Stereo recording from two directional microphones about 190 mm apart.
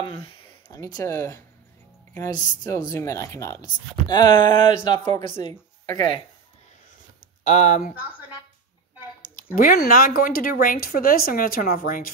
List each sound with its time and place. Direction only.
0.1 s speech: 25° left (ahead or behind)
4.1 s a sound: 25° left (ahead or behind)
5.5 s a woman's voice: 20° left (ahead or behind)
7.4 s speech: 35° left (ahead or behind)
9.6 s speech: 50° left (ahead or behind)